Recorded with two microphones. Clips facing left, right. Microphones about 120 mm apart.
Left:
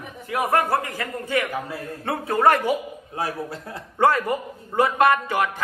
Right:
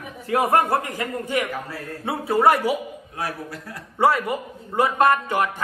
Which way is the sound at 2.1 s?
5° right (ahead or behind).